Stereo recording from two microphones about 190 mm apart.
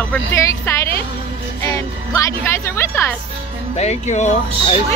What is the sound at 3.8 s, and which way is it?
Speech, 35° left (ahead or behind).